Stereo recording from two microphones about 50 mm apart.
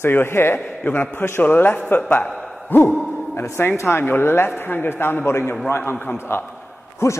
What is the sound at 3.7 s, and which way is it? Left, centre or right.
Speech, left.